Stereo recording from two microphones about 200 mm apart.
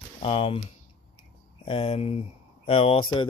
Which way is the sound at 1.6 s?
30° left (ahead or behind).